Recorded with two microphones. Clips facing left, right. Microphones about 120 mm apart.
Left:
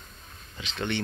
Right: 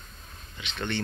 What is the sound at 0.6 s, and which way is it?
Speech, 25° left (ahead or behind).